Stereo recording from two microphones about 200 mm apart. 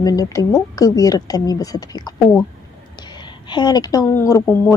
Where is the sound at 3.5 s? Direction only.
20° left (ahead or behind).